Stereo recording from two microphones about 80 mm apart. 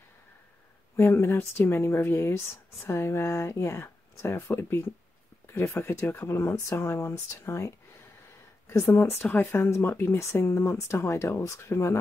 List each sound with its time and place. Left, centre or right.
0.9 s speech: left